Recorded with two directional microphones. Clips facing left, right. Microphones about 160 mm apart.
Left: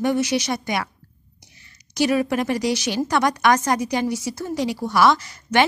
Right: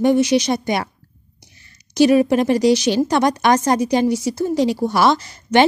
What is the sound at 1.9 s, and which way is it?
A woman's voice, 25° right (ahead or behind).